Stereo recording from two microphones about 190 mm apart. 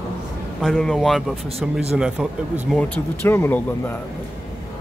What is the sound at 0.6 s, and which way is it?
Speech, 5° left (ahead or behind).